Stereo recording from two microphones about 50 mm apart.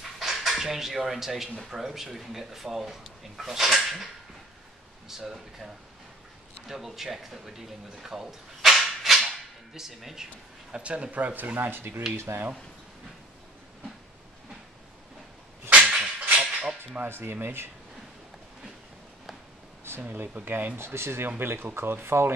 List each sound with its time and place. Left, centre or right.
0.2 s speech: centre
6.7 s speech: centre
10.8 s speech: right
11.7 s speech: right
12.2 s speech: right
15.9 s hammer: centre
17.0 s speech: right
20.2 s speech: right
20.8 s speech: right